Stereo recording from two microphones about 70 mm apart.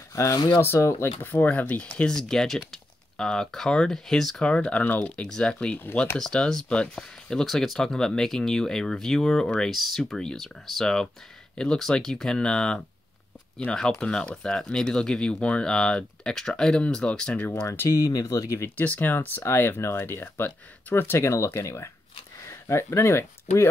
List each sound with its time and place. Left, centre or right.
0.1 s speech: left
1.2 s speech: left
2.0 s speech: centre
4.5 s speech: centre
13.7 s speech: centre
17.7 s speech: left
18.8 s speech: left